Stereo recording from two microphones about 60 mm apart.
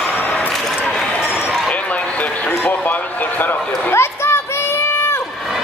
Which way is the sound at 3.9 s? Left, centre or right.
Left.